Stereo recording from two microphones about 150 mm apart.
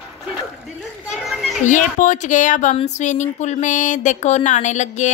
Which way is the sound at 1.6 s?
55° left (ahead or behind).